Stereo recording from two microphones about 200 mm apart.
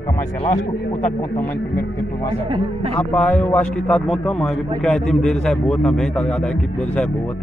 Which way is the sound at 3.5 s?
5° left (ahead or behind).